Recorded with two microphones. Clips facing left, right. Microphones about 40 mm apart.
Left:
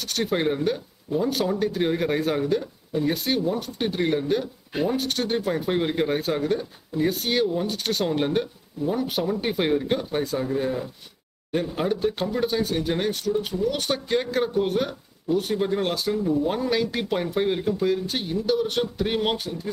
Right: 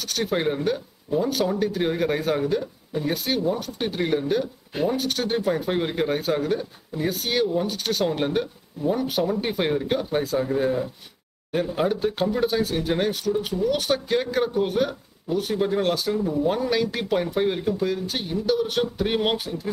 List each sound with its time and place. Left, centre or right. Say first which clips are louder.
0.0 s speech: even; centre